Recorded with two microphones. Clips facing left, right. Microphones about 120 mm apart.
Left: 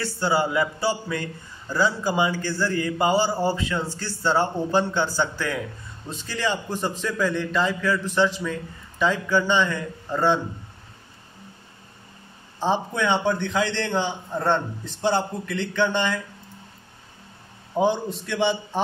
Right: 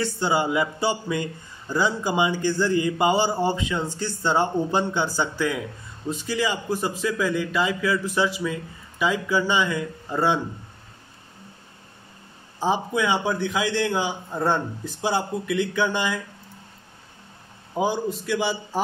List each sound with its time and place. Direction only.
0.0 s a man's voice: 15° right (ahead or behind)
12.5 s a man's voice: 10° right (ahead or behind)
17.7 s a man's voice: 5° right (ahead or behind)